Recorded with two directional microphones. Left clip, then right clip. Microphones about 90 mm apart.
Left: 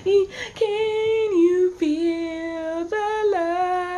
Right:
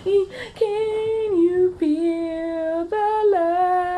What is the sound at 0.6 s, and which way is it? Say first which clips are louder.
Female singing: even; 65° left (ahead or behind).